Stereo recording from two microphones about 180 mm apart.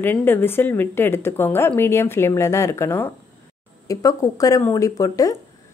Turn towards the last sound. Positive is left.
turn(degrees=20)  # may be behind; listen again after turning